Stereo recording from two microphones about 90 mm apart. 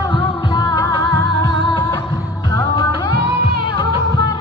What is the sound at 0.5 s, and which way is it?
Music, 50° left (ahead or behind).